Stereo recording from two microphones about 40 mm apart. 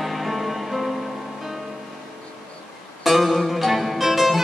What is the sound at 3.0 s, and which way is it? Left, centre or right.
Music, centre.